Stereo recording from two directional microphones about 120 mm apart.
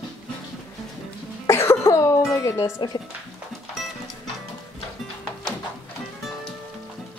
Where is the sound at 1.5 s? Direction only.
20° left (ahead or behind).